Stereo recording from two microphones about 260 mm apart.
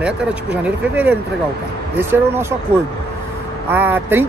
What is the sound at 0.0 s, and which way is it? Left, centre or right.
Speech, centre.